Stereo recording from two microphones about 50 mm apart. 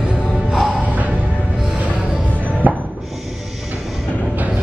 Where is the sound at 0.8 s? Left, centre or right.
Right.